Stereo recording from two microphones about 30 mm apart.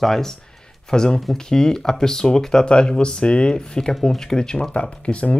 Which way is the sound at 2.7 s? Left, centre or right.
Left.